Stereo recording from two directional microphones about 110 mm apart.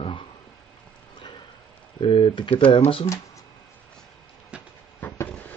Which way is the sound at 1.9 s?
50° left (ahead or behind).